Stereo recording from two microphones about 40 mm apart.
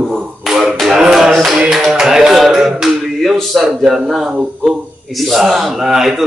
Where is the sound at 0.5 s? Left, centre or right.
Centre.